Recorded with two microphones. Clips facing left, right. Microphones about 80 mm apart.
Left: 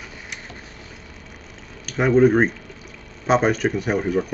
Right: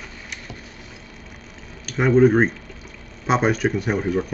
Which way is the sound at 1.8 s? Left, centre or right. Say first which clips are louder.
Even; centre.